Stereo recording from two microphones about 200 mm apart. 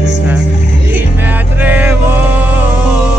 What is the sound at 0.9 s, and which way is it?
Music, 10° right (ahead or behind).